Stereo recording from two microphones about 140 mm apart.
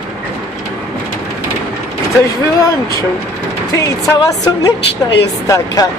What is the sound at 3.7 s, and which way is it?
Speech, 25° left (ahead or behind).